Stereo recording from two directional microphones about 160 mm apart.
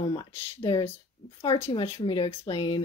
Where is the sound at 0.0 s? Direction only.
30° left (ahead or behind).